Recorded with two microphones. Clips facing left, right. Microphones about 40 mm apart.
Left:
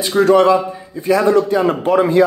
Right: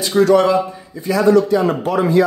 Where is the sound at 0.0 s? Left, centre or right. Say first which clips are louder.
Left 1 dB; left.